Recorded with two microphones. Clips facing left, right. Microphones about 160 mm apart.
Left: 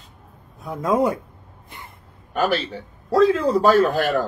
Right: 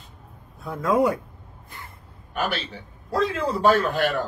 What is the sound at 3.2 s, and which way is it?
A man's voice, 40° left (ahead or behind).